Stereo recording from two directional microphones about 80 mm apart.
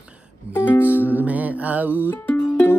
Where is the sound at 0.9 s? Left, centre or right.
Right.